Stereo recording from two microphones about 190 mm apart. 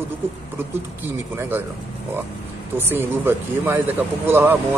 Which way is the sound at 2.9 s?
10° right (ahead or behind).